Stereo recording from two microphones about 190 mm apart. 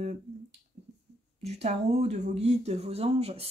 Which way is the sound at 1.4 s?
35° right (ahead or behind).